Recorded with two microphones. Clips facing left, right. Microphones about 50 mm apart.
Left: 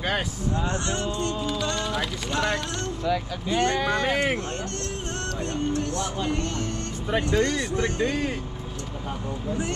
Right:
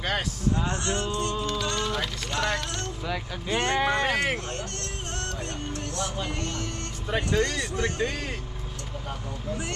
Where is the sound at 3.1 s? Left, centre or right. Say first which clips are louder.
Left 7 dB; centre.